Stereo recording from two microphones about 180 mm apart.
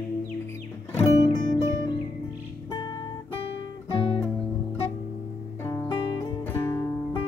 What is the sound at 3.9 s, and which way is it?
Music, 30° left (ahead or behind).